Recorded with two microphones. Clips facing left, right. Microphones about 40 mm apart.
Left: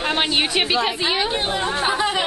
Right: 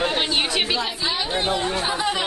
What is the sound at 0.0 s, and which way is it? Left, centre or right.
Speech, left.